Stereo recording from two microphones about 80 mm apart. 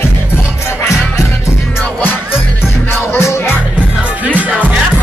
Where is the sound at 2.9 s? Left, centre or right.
Left.